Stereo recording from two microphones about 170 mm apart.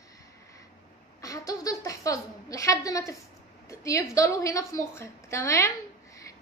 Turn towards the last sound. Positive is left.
turn(degrees=20)  # may be behind; listen again after turning